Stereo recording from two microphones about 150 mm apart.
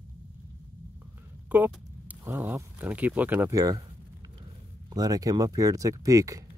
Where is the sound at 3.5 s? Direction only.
25° right (ahead or behind).